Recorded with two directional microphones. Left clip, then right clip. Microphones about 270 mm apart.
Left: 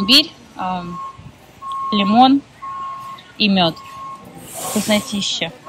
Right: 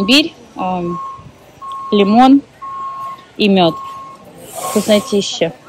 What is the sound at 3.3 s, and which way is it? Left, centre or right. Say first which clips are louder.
Speech: right 4 dB; centre.